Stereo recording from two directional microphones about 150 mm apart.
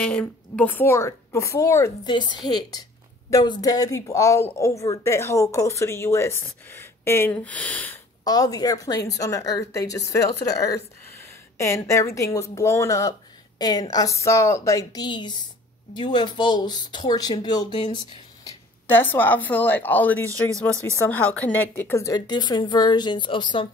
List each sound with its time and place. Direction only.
0.0 s a woman's voice: 5° left (ahead or behind)
2.0 s a woman's voice: 30° left (ahead or behind); by 8.0 s 10° left (ahead or behind)
8.2 s a woman's voice: 25° left (ahead or behind)
18.4 s a woman's voice: 15° left (ahead or behind); by 23.7 s 30° left (ahead or behind)